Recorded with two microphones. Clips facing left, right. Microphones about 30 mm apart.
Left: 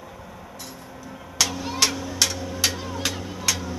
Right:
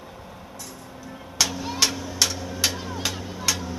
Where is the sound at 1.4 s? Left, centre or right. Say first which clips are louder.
Left 1 dB; centre.